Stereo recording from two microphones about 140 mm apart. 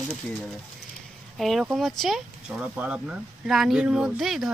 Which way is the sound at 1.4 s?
Centre (ahead or behind).